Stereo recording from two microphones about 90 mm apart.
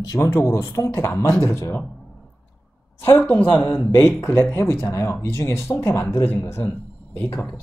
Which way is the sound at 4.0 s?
30° left (ahead or behind).